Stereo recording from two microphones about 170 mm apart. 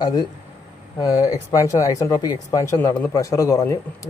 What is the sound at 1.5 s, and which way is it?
Speech, 20° left (ahead or behind).